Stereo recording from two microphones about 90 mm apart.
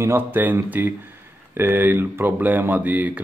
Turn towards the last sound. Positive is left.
turn(degrees=-20)  # may be behind; listen again after turning